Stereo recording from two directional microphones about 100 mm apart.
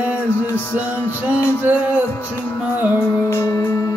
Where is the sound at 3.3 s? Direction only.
30° left (ahead or behind).